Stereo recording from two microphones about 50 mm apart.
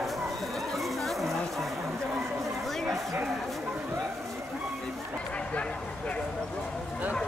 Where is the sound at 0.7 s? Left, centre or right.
Centre.